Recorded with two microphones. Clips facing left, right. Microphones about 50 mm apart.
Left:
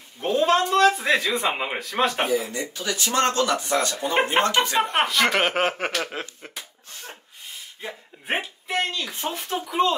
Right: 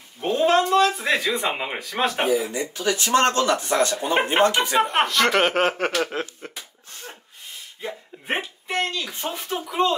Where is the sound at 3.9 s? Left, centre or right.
Right.